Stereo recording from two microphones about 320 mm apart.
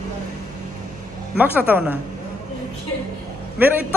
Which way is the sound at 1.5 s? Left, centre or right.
Centre.